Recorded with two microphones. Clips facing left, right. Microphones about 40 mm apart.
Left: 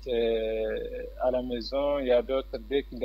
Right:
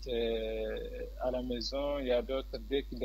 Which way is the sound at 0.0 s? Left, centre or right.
Left.